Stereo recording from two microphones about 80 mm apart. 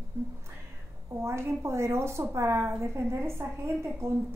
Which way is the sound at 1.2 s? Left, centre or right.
Right.